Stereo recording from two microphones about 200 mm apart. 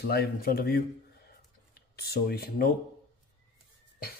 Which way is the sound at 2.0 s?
50° left (ahead or behind).